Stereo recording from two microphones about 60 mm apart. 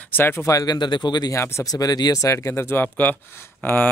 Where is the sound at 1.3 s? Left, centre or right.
Left.